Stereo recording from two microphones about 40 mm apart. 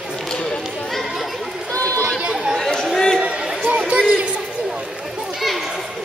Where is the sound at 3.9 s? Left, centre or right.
Right.